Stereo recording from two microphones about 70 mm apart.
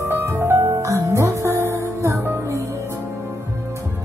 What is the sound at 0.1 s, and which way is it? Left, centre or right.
Music, right.